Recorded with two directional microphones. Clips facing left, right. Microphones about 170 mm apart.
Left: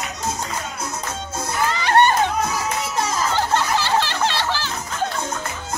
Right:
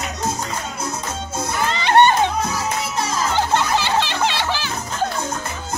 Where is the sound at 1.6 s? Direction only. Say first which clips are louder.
Right 2 dB; 25° right (ahead or behind).